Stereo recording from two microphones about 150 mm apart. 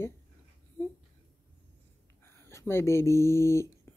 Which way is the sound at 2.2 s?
15° left (ahead or behind).